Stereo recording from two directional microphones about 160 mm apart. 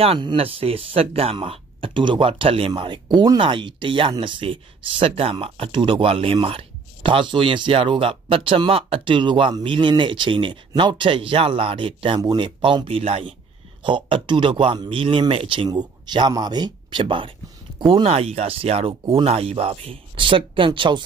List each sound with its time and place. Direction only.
0.0 s speech: 35° right (ahead or behind)